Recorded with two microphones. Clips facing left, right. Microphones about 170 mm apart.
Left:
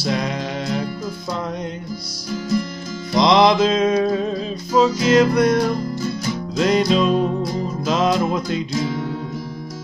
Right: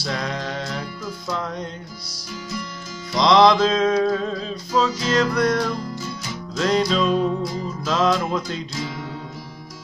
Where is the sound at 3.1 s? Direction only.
15° left (ahead or behind).